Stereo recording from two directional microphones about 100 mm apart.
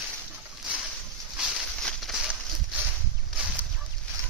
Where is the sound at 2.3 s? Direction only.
10° right (ahead or behind).